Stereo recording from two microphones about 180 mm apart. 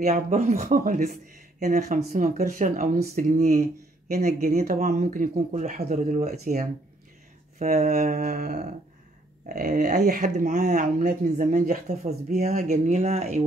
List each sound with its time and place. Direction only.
0.0 s speech: 40° right (ahead or behind)